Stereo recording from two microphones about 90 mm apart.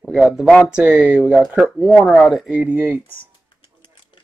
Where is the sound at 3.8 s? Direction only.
65° left (ahead or behind).